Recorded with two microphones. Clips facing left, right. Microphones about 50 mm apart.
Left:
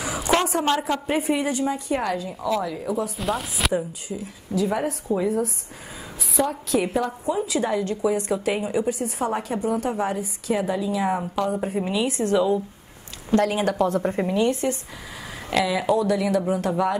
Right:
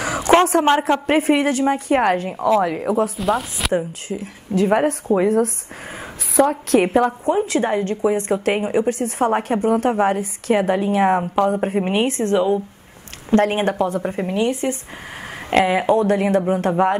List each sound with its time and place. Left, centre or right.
0.0 s a sound: right
1.0 s a woman's voice: right
3.2 s chopping: centre
3.7 s speech: right
7.7 s a woman's voice: right
13.7 s a woman's voice: centre
14.3 s speech: right
15.5 s speech: right